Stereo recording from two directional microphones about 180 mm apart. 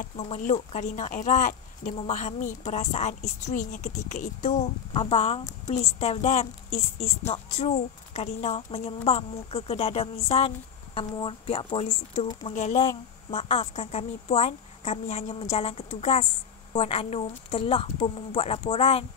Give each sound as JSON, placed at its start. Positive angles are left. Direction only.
{"t": 0.1, "sound": "speech", "side_deg": 40}